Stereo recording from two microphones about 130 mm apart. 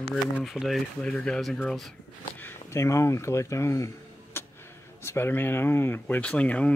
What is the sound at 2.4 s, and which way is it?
Speech, 20° left (ahead or behind).